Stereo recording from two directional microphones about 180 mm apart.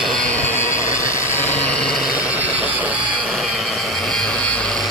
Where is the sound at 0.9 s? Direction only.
15° left (ahead or behind).